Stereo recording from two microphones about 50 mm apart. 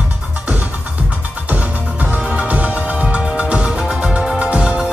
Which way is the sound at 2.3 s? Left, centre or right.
Right.